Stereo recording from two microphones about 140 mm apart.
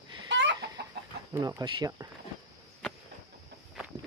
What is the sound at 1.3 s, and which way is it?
Speech, 25° right (ahead or behind).